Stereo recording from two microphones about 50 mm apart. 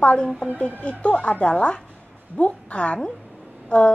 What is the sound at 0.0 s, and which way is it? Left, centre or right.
Speech, left.